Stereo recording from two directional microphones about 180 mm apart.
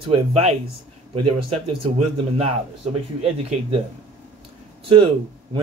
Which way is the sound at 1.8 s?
35° right (ahead or behind).